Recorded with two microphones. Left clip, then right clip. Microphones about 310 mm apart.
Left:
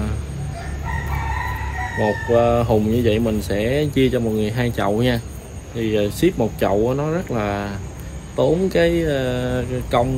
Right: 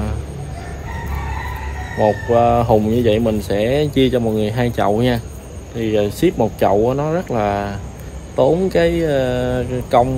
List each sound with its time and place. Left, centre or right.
2.0 s speech: centre